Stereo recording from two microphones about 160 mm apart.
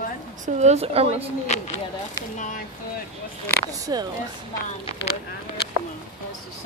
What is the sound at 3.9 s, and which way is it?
Speech, 25° right (ahead or behind).